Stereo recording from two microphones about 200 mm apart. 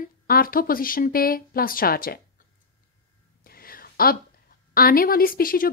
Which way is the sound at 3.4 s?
50° left (ahead or behind).